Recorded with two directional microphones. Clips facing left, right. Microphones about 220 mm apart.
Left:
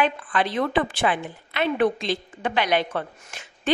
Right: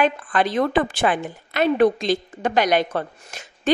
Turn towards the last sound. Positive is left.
turn(degrees=-40)  # may be behind; listen again after turning